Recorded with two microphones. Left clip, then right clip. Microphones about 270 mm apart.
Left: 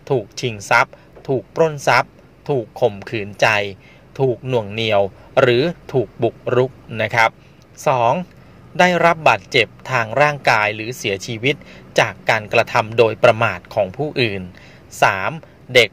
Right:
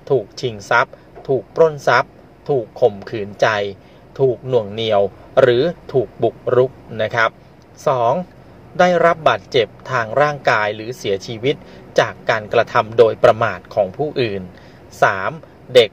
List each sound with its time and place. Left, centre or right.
0.0 s speech: left
1.9 s a sound: left
2.7 s speech: left